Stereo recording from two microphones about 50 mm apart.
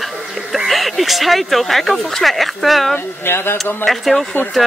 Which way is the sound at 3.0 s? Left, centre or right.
Left.